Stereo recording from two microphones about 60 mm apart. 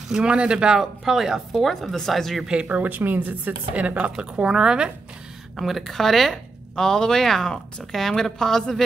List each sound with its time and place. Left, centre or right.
0.1 s speech: centre
0.7 s speech: centre
2.4 s a woman's voice: centre
5.6 s speech: centre